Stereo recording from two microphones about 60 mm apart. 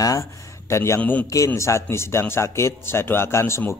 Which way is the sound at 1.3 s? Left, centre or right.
Left.